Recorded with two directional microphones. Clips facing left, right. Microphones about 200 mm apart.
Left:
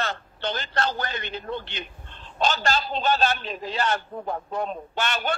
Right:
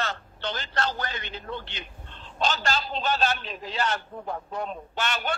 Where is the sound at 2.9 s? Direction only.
35° left (ahead or behind).